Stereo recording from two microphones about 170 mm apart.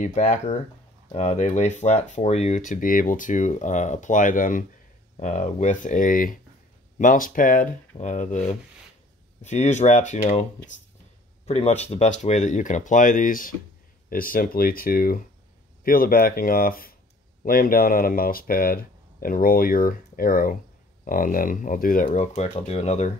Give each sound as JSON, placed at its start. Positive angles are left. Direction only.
{"t": 0.0, "sound": "speech", "side_deg": 45}
{"t": 11.4, "sound": "speech", "side_deg": 40}